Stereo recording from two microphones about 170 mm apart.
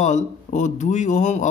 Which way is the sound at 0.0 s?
45° left (ahead or behind).